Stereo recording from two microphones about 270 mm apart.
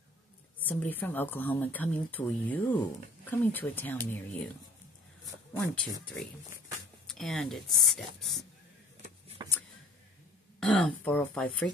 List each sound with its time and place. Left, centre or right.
0.6 s speech: centre
5.5 s speech: centre
9.0 s shuffling cards: right
10.6 s speech: centre